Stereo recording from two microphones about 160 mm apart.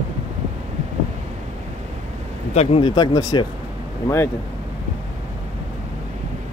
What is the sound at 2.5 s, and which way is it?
Speech, 40° left (ahead or behind).